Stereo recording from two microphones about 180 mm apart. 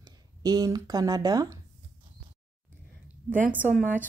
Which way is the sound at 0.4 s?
20° right (ahead or behind).